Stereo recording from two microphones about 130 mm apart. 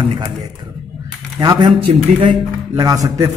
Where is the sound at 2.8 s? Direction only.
25° right (ahead or behind).